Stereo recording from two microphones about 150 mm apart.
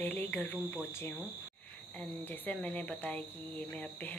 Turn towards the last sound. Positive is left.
turn(degrees=10)  # may be behind; listen again after turning